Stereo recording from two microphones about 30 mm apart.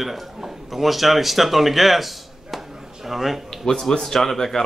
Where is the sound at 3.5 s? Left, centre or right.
Centre.